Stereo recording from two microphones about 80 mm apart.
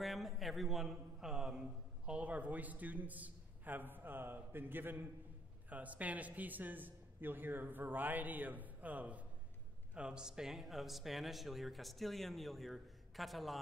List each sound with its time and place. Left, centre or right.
0.0 s a man's voice: centre